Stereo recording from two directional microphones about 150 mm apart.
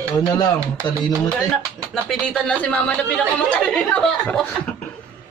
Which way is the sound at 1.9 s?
5° left (ahead or behind).